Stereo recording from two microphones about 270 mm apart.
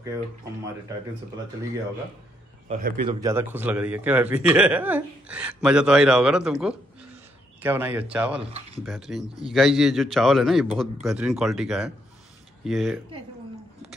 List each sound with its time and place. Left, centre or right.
2.7 s speech: right
3.1 s a man's voice: centre
8.4 s speech: right
8.8 s a man's voice: centre